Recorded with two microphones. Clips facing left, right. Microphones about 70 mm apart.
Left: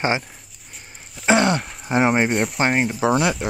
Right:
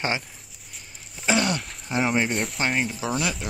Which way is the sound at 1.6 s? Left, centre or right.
Left.